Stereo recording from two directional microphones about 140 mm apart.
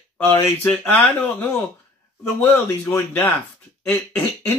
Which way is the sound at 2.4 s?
15° left (ahead or behind).